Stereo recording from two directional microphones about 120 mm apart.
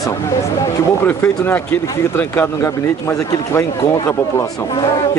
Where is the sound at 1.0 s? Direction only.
15° left (ahead or behind).